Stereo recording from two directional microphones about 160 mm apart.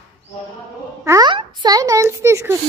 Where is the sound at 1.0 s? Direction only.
20° right (ahead or behind).